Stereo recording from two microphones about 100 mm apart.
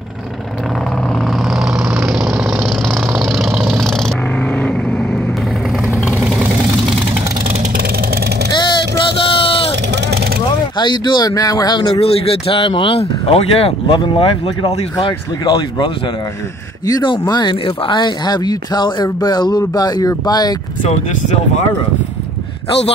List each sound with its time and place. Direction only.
1.5 s vehicle: 5° right (ahead or behind); by 5.2 s 10° left (ahead or behind)
8.5 s vehicle: 55° left (ahead or behind)
10.8 s speech: 50° left (ahead or behind)
11.9 s speech: 75° left (ahead or behind)
15.0 s speech: 50° left (ahead or behind)
17.2 s speech: 45° left (ahead or behind)